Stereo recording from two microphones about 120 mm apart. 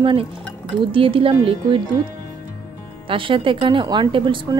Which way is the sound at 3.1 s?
45° right (ahead or behind).